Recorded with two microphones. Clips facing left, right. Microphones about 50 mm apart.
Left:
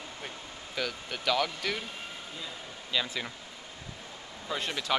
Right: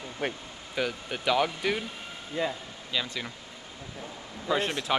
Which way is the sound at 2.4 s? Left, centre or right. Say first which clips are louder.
Right 15 dB; right.